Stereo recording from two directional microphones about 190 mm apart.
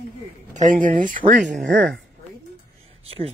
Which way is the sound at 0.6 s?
45° right (ahead or behind).